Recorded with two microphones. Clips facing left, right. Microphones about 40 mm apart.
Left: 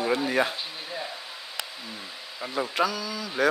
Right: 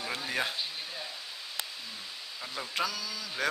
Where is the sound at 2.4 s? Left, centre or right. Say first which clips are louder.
Left 10 dB; left.